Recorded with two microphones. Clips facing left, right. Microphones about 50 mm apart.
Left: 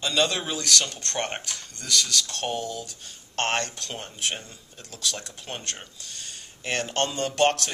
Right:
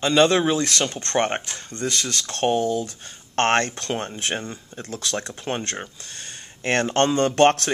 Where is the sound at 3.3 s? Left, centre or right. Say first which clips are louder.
Right 7 dB; right.